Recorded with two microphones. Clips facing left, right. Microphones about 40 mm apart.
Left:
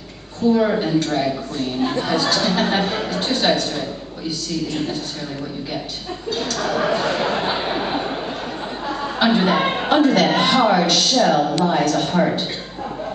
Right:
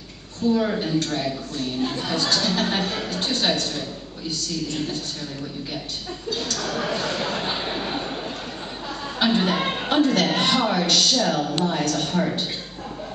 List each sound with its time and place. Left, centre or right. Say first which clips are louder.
0.5 s a woman's voice: left 5 dB; centre
6.3 s a woman's voice: left 6 dB; centre